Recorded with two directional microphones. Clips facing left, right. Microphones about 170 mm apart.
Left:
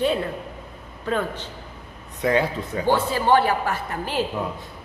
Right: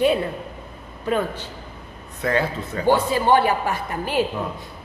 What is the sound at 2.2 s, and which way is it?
Speech, 15° left (ahead or behind).